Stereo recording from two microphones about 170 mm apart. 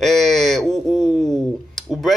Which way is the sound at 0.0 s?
Centre (ahead or behind).